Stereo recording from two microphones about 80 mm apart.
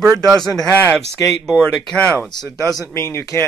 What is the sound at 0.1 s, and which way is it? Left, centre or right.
Speech, right.